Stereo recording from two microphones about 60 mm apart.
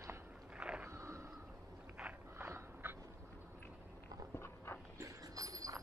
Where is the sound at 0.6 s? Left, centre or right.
Centre.